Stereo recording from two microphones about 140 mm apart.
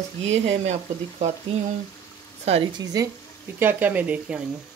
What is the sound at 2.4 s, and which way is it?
Speech, 45° right (ahead or behind).